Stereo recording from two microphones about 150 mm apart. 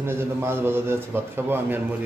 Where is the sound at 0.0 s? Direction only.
15° right (ahead or behind).